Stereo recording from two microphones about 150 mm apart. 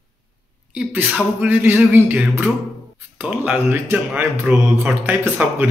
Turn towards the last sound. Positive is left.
turn(degrees=-15)  # may be behind; listen again after turning